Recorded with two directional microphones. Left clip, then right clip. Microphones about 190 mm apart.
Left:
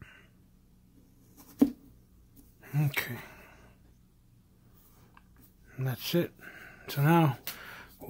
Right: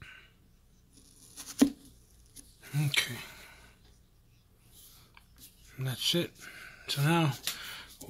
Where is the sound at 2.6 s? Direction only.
20° left (ahead or behind).